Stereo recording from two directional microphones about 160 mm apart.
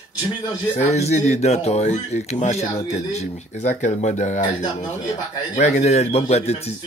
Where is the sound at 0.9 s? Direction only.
45° left (ahead or behind).